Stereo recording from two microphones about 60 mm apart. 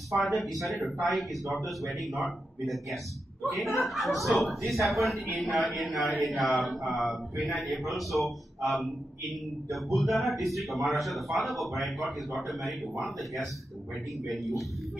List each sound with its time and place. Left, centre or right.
0.1 s speech: centre